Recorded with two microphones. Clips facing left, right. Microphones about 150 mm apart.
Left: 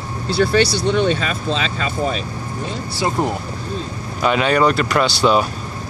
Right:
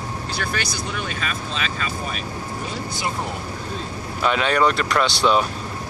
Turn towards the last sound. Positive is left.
turn(degrees=5)  # may be behind; listen again after turning